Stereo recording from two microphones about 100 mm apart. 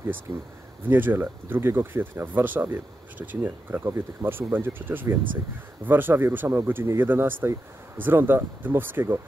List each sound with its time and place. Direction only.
0.3 s speech: 60° right (ahead or behind)
0.8 s speech: 20° right (ahead or behind)